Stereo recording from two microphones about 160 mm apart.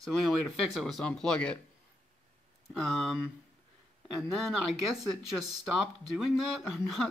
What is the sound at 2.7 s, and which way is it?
Speech, centre (ahead or behind).